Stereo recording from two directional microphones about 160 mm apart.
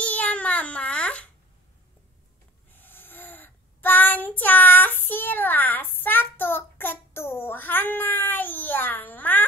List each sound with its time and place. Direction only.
0.0 s baby cry: 10° left (ahead or behind)
2.7 s child singing: 10° left (ahead or behind)